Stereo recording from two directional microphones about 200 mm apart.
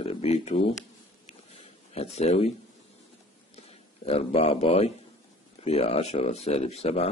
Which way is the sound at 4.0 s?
30° left (ahead or behind).